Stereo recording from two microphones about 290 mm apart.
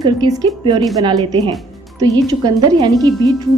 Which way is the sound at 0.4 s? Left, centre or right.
Centre.